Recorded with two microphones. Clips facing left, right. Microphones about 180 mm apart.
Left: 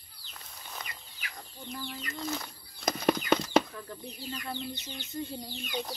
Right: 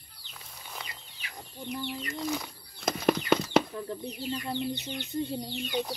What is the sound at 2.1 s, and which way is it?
Bird, 10° right (ahead or behind).